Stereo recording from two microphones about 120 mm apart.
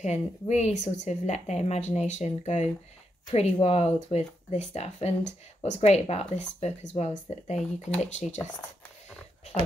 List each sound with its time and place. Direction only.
0.0 s speech: 70° left (ahead or behind)